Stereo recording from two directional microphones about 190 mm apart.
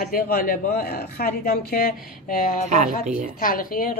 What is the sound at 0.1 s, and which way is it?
A man's voice, 50° left (ahead or behind).